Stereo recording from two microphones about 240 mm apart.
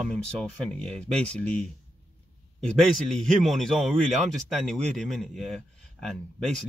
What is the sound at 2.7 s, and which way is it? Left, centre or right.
Speech, centre.